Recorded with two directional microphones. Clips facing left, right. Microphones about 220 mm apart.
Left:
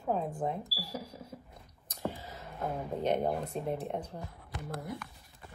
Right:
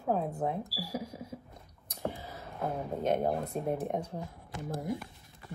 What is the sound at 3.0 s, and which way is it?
Speech, 5° right (ahead or behind).